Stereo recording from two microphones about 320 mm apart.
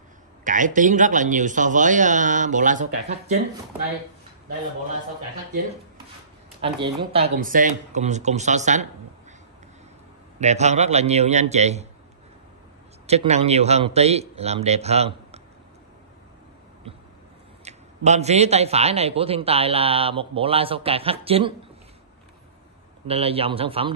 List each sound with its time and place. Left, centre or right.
0.4 s a man's voice: right
6.6 s a man's voice: centre
10.4 s a man's voice: right
13.0 s a man's voice: centre
17.6 s a man's voice: right
23.0 s a man's voice: centre